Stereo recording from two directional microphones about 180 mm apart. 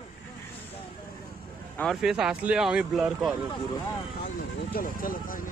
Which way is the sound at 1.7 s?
Centre (ahead or behind).